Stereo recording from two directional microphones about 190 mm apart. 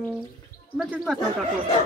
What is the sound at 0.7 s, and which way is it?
Speech, centre (ahead or behind).